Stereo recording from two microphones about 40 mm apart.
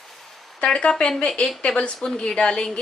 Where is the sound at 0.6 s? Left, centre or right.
Left.